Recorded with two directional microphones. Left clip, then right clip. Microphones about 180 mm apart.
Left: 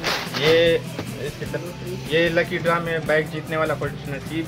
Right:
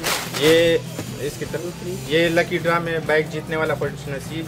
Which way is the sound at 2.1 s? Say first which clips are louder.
Right 1 dB; 20° right (ahead or behind).